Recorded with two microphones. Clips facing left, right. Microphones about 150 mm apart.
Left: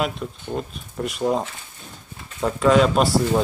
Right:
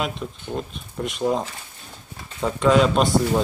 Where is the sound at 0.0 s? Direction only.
Centre (ahead or behind).